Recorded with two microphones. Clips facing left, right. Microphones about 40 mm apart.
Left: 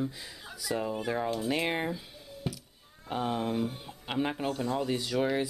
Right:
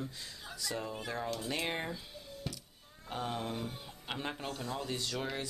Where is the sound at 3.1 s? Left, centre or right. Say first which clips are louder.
Left 7 dB; centre.